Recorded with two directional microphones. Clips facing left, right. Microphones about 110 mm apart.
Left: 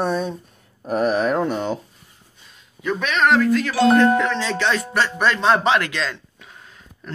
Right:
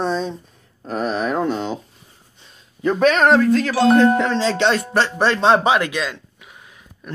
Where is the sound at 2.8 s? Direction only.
35° right (ahead or behind).